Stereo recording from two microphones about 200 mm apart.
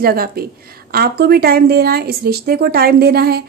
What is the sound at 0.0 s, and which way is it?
A woman's voice, 50° right (ahead or behind).